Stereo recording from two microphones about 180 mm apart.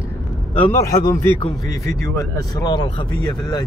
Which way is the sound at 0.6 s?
15° left (ahead or behind).